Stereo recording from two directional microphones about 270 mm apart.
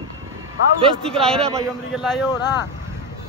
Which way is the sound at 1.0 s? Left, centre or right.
Centre.